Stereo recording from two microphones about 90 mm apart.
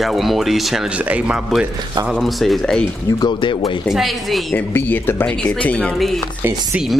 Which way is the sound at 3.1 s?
60° left (ahead or behind).